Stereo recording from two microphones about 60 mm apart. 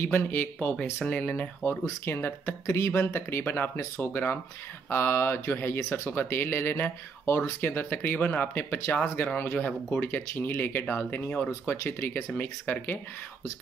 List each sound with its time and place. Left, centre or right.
0.0 s speech: left
1.6 s speech: left
2.6 s speech: left
3.7 s speech: left
6.0 s speech: left
11.6 s speech: left
12.4 s speech: left